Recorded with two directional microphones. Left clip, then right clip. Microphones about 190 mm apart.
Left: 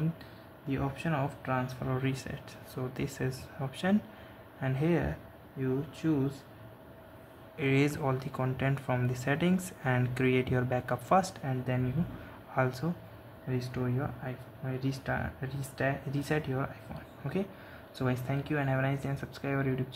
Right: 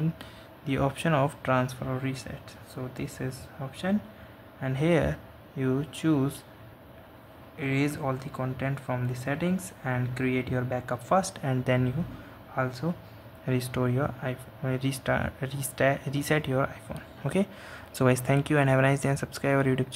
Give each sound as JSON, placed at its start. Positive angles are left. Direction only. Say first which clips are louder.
{"t": 0.7, "sound": "speech", "louder": "right 7 dB", "side_deg": -25}
{"t": 1.8, "sound": "speech", "louder": "right 1 dB", "side_deg": 0}
{"t": 4.8, "sound": "speech", "louder": "right 7 dB", "side_deg": -15}
{"t": 7.5, "sound": "speech", "louder": "even", "side_deg": 0}
{"t": 11.7, "sound": "speech", "louder": "right 8 dB", "side_deg": -15}
{"t": 12.5, "sound": "speech", "louder": "even", "side_deg": 5}
{"t": 13.5, "sound": "speech", "louder": "right 6 dB", "side_deg": -25}